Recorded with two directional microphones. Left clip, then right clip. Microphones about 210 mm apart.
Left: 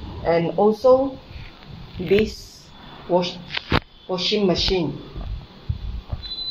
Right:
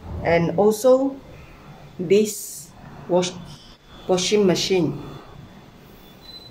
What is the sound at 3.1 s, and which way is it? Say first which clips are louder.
Speech: even; 10° right (ahead or behind).